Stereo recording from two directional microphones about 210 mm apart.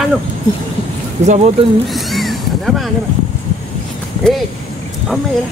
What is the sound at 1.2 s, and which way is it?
Speech, 35° right (ahead or behind).